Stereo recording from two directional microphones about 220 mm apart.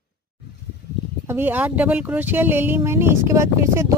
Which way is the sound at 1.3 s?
10° right (ahead or behind).